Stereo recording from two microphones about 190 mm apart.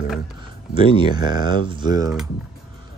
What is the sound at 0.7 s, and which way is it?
Speech, 25° right (ahead or behind).